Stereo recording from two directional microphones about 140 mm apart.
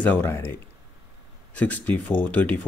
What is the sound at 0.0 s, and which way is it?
Speech, 15° left (ahead or behind).